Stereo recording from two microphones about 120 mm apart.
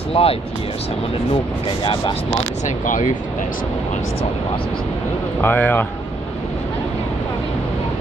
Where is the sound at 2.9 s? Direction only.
90° left.